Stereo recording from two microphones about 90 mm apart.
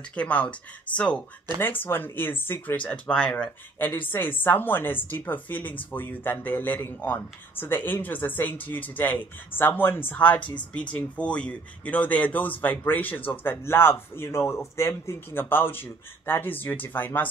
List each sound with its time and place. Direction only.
0.1 s speech: 15° left (ahead or behind)
3.8 s speech: 20° left (ahead or behind)